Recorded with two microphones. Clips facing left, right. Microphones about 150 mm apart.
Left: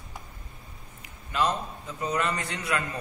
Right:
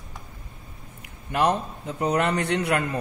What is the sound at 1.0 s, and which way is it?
A man's voice, 60° right (ahead or behind).